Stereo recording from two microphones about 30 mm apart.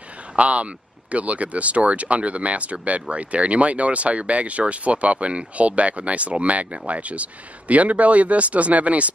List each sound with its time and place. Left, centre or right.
0.4 s speech: right